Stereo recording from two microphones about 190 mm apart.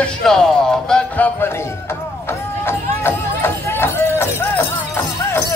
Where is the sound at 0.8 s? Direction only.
5° left (ahead or behind).